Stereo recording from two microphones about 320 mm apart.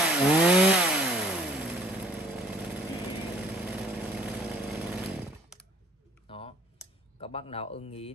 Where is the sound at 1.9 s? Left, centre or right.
Centre.